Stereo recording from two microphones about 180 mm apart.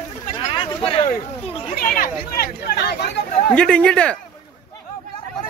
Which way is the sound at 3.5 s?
5° left (ahead or behind).